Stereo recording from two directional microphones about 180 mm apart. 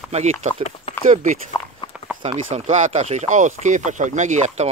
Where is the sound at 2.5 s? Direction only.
40° right (ahead or behind).